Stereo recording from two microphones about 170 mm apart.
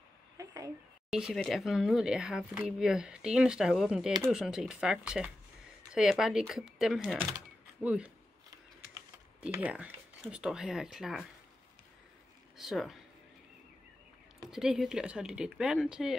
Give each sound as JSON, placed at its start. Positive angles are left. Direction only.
{"t": 0.4, "sound": "a sound", "side_deg": -20}
{"t": 1.1, "sound": "speech", "side_deg": 0}
{"t": 9.4, "sound": "speech", "side_deg": -10}
{"t": 12.5, "sound": "speech", "side_deg": 0}
{"t": 14.5, "sound": "speech", "side_deg": 0}